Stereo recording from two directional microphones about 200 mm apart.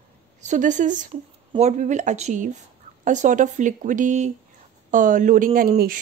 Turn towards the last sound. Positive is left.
turn(degrees=-45)  # may be behind; listen again after turning